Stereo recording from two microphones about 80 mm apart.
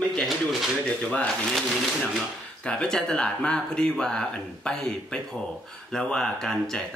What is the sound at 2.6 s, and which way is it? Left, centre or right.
Speech, centre.